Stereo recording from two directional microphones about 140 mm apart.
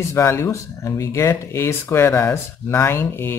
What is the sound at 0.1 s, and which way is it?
Speech, 20° left (ahead or behind).